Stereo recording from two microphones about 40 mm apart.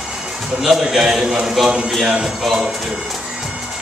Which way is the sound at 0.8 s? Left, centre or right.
Centre.